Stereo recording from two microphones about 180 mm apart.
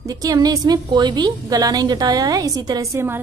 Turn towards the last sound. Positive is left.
turn(degrees=-15)  # may be behind; listen again after turning